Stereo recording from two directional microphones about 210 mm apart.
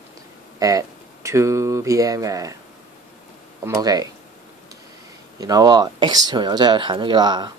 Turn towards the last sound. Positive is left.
turn(degrees=-20)  # may be behind; listen again after turning